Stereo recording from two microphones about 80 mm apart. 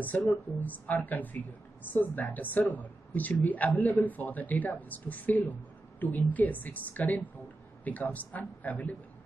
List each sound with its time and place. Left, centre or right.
0.3 s speech: left